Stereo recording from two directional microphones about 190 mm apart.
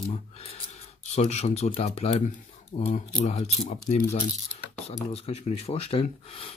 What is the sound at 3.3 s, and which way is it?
Speech, 35° left (ahead or behind).